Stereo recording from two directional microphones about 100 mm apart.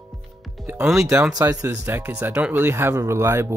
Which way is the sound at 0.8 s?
5° right (ahead or behind).